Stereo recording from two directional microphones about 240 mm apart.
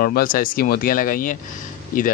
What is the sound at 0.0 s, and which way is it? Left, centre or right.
Speech, left.